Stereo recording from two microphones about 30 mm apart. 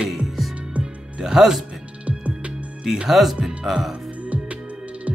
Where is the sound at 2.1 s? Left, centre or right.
Right.